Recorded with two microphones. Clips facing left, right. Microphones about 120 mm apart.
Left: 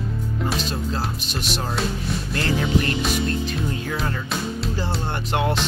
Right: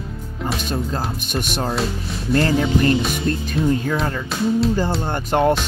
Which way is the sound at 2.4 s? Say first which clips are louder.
Right 5 dB; 35° right (ahead or behind).